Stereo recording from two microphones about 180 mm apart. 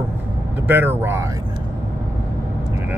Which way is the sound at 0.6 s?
10° right (ahead or behind).